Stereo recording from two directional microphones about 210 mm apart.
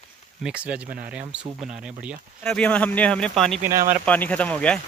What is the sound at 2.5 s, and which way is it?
Speech, 5° left (ahead or behind).